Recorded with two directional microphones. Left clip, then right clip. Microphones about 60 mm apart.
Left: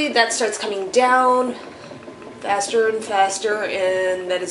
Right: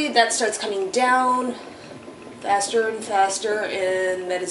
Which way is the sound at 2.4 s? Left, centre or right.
Left.